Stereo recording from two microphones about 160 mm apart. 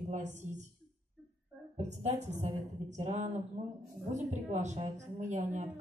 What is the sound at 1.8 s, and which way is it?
A woman's voice, 45° right (ahead or behind).